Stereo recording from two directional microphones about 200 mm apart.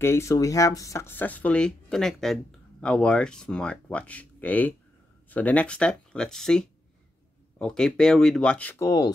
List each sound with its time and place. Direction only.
0.0 s speech: 15° left (ahead or behind)